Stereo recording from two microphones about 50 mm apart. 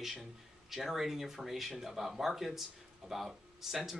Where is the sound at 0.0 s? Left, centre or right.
Centre.